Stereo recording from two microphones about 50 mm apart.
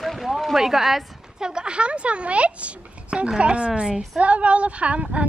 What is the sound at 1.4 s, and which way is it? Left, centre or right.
Speech, centre.